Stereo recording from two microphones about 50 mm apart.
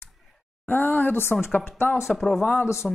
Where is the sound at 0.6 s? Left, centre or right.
Left.